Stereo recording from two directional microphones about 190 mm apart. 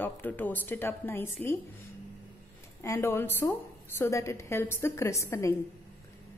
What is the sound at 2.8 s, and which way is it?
A woman's voice, 15° left (ahead or behind).